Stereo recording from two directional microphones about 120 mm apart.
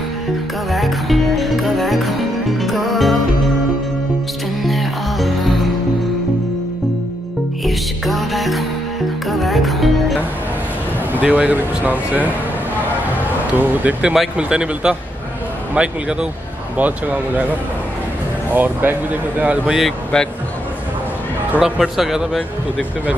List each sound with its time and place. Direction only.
0.7 s music: centre (ahead or behind)
4.6 s music: centre (ahead or behind)
7.6 s music: centre (ahead or behind)
11.1 s speech: 10° right (ahead or behind)
13.6 s speech: 10° right (ahead or behind)
18.5 s speech: 15° right (ahead or behind)
21.5 s speech: 5° right (ahead or behind)